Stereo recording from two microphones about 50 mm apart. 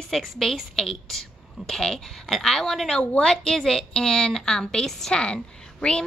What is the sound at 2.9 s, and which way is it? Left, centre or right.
Speech, left.